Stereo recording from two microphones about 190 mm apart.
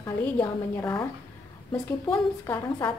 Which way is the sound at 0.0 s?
15° left (ahead or behind).